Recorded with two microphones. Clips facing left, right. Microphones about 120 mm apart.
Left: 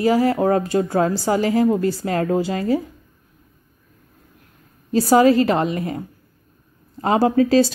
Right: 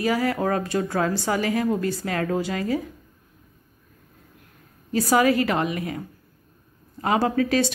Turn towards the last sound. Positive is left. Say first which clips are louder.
# left 6 dB
turn(degrees=30)  # may be behind; listen again after turning